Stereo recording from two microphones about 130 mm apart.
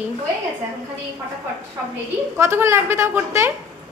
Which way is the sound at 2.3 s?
20° right (ahead or behind).